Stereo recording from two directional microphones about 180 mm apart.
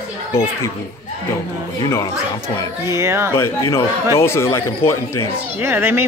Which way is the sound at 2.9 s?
15° right (ahead or behind).